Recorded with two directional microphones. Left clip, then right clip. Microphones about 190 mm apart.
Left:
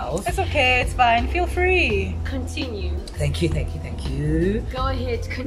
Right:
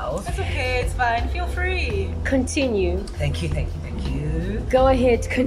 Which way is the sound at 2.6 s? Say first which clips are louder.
Right 5 dB; 40° right (ahead or behind).